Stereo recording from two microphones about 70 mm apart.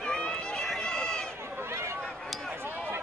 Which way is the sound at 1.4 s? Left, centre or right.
Right.